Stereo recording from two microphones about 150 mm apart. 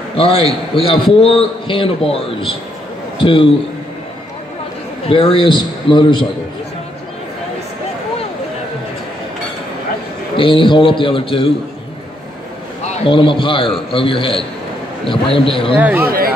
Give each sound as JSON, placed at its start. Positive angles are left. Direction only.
{"t": 0.2, "sound": "a man's voice", "side_deg": 40}
{"t": 5.0, "sound": "a man's voice", "side_deg": 35}
{"t": 10.3, "sound": "a man's voice", "side_deg": 35}
{"t": 12.8, "sound": "a man's voice", "side_deg": 35}
{"t": 15.8, "sound": "speech", "side_deg": -10}